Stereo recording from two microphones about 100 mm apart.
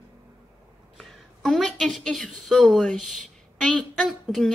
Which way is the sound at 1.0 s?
Centre (ahead or behind).